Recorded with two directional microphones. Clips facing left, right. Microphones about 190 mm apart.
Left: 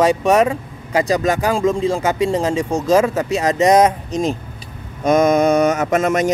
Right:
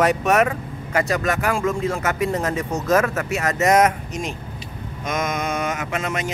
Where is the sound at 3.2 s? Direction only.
30° left (ahead or behind).